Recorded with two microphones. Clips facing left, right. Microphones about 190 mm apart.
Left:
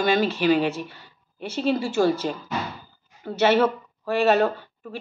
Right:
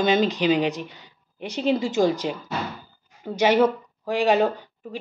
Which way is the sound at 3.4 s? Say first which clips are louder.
Right 1 dB; 15° right (ahead or behind).